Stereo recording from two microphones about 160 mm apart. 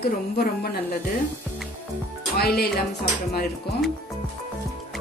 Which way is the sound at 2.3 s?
75° left (ahead or behind).